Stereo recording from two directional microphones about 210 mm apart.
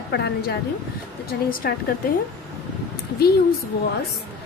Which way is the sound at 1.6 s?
45° left (ahead or behind).